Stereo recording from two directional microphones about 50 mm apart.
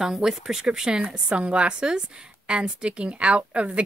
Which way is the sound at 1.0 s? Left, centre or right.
Right.